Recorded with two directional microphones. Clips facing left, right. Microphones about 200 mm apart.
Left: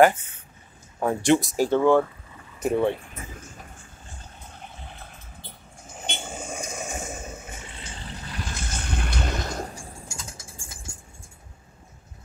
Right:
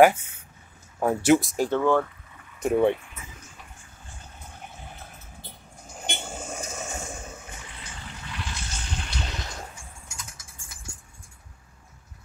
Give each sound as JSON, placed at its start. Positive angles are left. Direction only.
{"t": 0.9, "sound": "speech", "side_deg": -5}
{"t": 1.7, "sound": "speech", "side_deg": 15}
{"t": 2.7, "sound": "speech", "side_deg": -15}
{"t": 6.2, "sound": "vehicle", "side_deg": 10}